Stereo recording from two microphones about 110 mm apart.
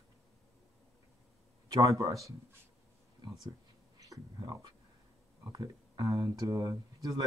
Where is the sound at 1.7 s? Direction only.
30° right (ahead or behind).